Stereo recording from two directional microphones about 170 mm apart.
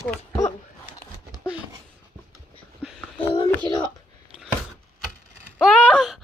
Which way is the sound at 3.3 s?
25° left (ahead or behind).